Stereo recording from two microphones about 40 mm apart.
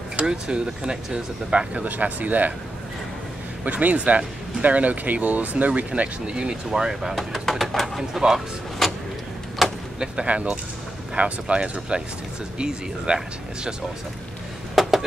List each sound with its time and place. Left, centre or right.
0.2 s speech: right
1.7 s speech: right
3.6 s speech: right
6.7 s speech: centre
8.8 s vehicle: centre
9.6 s door: centre
10.2 s speech: right
14.8 s a sound: centre